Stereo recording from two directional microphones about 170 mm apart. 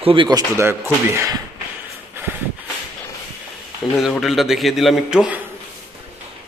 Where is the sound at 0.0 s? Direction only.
30° right (ahead or behind).